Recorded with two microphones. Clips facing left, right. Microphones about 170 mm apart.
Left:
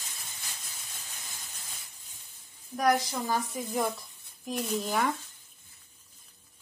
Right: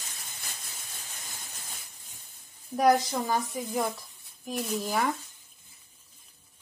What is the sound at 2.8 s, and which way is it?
Speech, 25° right (ahead or behind).